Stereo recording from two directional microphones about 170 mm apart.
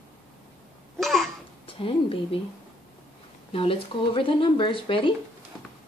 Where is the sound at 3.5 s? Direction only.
35° left (ahead or behind).